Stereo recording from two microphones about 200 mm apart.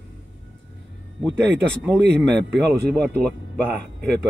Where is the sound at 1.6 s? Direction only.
5° left (ahead or behind).